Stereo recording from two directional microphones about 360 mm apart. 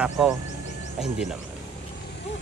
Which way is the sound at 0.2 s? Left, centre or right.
Centre.